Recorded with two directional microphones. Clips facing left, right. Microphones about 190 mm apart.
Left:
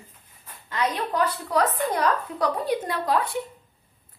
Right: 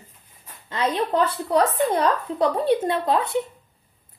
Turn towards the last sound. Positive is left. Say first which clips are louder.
# right 3 dB
turn(degrees=-25)  # may be behind; listen again after turning